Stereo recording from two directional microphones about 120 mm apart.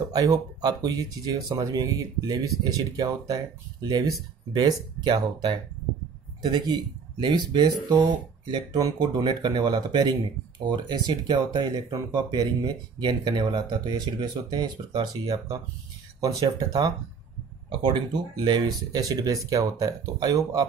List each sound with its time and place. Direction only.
0.1 s speech: 35° right (ahead or behind)
7.2 s speech: 40° right (ahead or behind)